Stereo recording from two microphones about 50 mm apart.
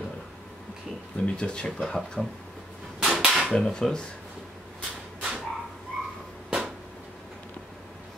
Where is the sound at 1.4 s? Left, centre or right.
Centre.